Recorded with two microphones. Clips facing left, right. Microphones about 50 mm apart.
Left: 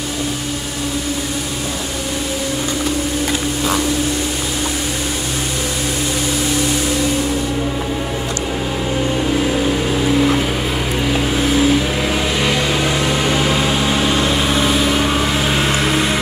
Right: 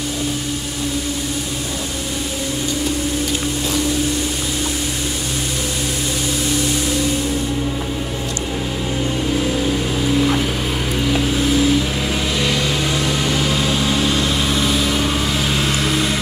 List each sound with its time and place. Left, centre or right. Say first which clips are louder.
9.3 s vehicle: left 1 dB; left